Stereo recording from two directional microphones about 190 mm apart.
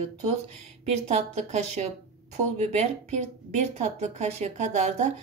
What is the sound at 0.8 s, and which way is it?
A woman's voice, 35° right (ahead or behind).